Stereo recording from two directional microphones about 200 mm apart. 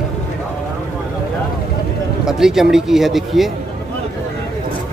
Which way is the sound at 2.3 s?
Centre (ahead or behind).